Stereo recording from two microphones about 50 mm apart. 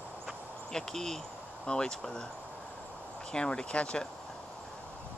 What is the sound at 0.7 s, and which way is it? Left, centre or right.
Speech, centre.